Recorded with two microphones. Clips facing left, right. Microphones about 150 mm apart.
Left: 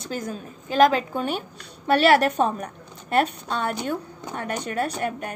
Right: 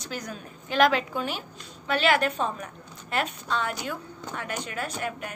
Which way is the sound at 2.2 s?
40° left (ahead or behind).